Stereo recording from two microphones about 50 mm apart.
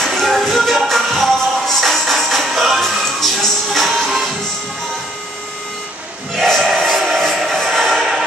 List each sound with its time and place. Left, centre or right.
0.0 s music: centre
6.8 s music: centre